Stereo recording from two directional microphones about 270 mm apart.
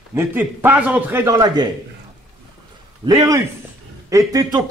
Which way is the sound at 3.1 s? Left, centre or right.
Centre.